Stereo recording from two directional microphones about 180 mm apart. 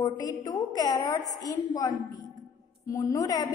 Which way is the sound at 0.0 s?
20° left (ahead or behind).